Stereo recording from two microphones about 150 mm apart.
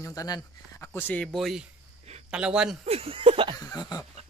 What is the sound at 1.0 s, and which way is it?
Speech, 10° left (ahead or behind).